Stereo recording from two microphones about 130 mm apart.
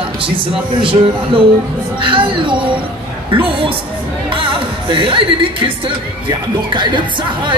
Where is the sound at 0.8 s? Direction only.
40° right (ahead or behind).